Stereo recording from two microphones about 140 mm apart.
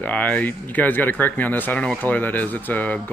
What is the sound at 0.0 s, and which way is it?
Speech, 10° left (ahead or behind).